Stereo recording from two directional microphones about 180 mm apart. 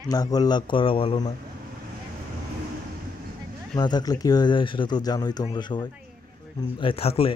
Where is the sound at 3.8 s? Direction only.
25° left (ahead or behind).